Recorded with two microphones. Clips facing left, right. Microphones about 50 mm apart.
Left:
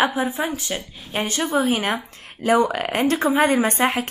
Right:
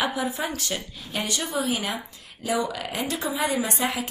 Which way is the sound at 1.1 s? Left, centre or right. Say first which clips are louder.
Left 6 dB; left.